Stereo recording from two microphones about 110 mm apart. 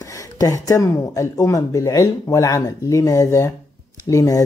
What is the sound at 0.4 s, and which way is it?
Speech, 30° left (ahead or behind).